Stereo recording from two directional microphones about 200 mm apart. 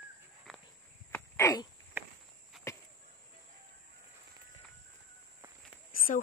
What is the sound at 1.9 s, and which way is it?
Walk, 10° right (ahead or behind).